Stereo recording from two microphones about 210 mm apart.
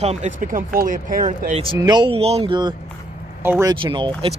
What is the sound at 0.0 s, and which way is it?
Speech, 35° right (ahead or behind).